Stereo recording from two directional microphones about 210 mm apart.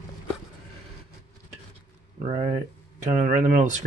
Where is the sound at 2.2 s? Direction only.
30° right (ahead or behind).